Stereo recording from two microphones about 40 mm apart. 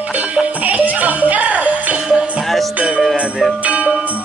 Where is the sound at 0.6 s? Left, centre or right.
Right.